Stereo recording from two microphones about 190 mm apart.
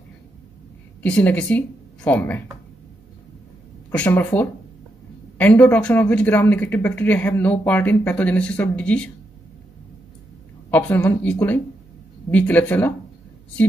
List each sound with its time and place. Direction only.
1.0 s speech: 5° left (ahead or behind)
3.9 s speech: 10° left (ahead or behind)
10.7 s speech: 10° left (ahead or behind)